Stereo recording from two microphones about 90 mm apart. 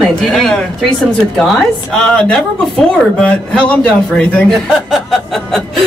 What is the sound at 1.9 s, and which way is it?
A woman's voice, 10° left (ahead or behind).